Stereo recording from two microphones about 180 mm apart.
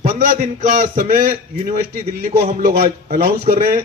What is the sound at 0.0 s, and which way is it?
A man's voice, 45° right (ahead or behind).